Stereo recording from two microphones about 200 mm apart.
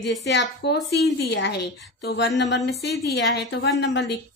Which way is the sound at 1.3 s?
60° left (ahead or behind).